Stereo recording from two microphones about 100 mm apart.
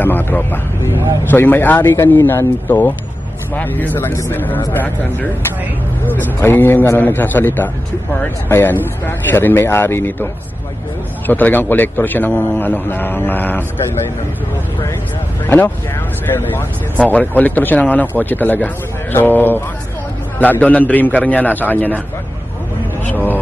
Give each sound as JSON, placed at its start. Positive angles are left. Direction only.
{"t": 0.0, "sound": "a man's voice", "side_deg": 20}
{"t": 11.2, "sound": "a man's voice", "side_deg": 20}
{"t": 15.4, "sound": "a man's voice", "side_deg": 20}
{"t": 17.0, "sound": "a man's voice", "side_deg": 15}
{"t": 23.1, "sound": "speech", "side_deg": 20}